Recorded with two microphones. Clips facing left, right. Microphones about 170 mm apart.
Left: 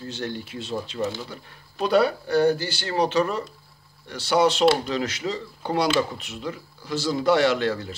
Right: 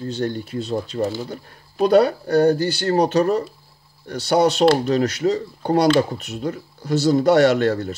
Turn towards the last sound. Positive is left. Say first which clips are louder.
# right 6 dB
turn(degrees=-45)  # may be behind; listen again after turning